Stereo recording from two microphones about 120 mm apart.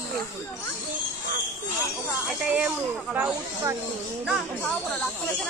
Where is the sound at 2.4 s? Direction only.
15° right (ahead or behind).